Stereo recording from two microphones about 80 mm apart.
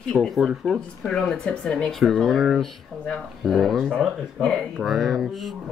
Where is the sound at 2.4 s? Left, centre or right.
Centre.